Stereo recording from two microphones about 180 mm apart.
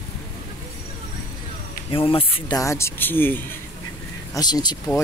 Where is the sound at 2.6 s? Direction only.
15° left (ahead or behind).